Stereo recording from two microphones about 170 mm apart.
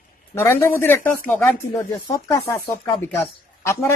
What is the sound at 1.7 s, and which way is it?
Speech, 20° left (ahead or behind).